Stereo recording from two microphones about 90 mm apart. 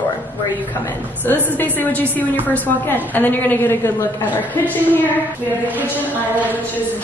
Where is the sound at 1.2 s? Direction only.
20° left (ahead or behind).